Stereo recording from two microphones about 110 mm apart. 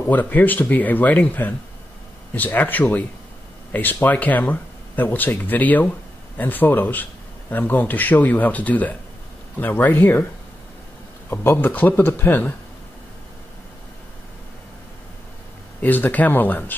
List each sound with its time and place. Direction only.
0.1 s a man's voice: 15° left (ahead or behind)
11.2 s a man's voice: 20° left (ahead or behind)
15.8 s a man's voice: 15° left (ahead or behind)